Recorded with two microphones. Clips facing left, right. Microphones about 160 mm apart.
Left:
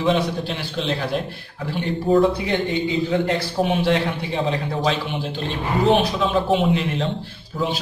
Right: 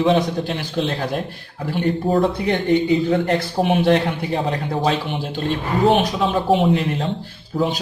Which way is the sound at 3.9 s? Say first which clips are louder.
Right 3 dB; 40° right (ahead or behind).